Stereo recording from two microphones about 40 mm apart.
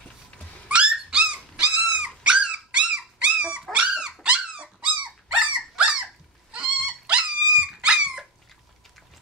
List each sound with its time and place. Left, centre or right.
0.7 s dog: right